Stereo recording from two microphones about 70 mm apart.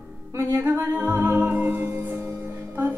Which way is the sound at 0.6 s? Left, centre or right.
Right.